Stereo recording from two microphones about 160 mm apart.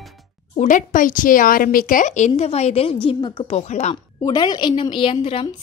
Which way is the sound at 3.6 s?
45° left (ahead or behind).